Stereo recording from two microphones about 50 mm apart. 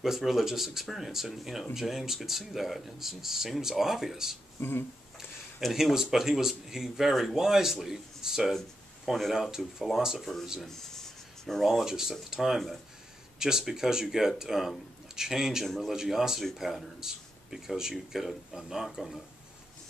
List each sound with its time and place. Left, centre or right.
0.0 s speech: centre
4.6 s speech: left
5.6 s speech: centre
10.7 s writing: centre
11.6 s speech: centre